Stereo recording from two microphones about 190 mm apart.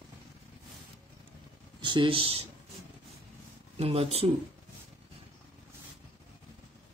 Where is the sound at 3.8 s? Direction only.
30° right (ahead or behind).